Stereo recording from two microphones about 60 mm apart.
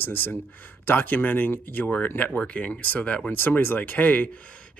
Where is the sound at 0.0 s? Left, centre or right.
Left.